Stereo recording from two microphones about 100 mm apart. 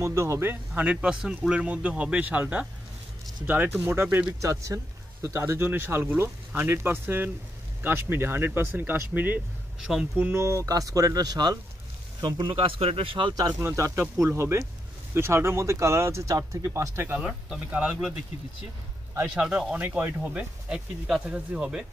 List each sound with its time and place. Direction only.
0.0 s speech: 30° right (ahead or behind)
4.4 s speech: 30° right (ahead or behind); by 13.3 s 60° right (ahead or behind)
13.3 s speech: 40° right (ahead or behind)
13.6 s speech: 30° right (ahead or behind)
17.2 s speech: 10° right (ahead or behind)
19.2 s speech: 10° right (ahead or behind)